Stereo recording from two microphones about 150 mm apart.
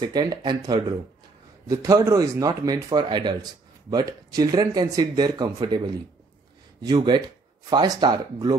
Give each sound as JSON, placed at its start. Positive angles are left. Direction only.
{"t": 0.0, "sound": "speech", "side_deg": -25}
{"t": 6.8, "sound": "speech", "side_deg": -30}